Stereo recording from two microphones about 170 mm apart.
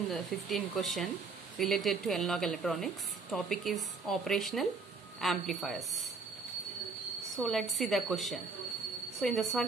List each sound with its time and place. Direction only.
0.1 s a woman's voice: centre (ahead or behind)
7.2 s a woman's voice: centre (ahead or behind)